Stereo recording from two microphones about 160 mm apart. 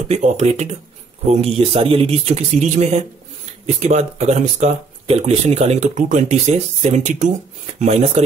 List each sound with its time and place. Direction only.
0.1 s speech: 45° right (ahead or behind)